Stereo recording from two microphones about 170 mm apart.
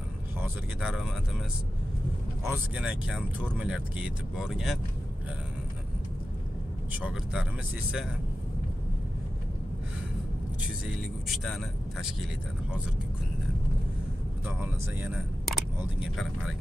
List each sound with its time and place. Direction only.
0.4 s speech: 5° right (ahead or behind)
2.4 s speech: 10° right (ahead or behind)
6.9 s speech: 5° right (ahead or behind)
11.2 s speech: centre (ahead or behind)
14.6 s speech: 10° right (ahead or behind)
15.4 s a sound: centre (ahead or behind)